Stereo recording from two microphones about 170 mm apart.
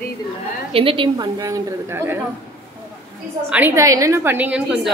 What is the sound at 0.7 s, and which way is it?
Speech, 30° right (ahead or behind).